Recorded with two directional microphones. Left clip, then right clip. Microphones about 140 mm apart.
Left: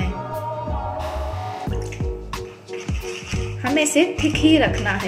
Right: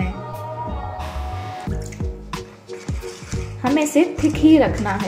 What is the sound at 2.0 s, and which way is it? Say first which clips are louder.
Music: left 3 dB; 10° left (ahead or behind).